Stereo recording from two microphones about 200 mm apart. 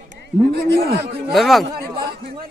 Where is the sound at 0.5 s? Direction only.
55° right (ahead or behind).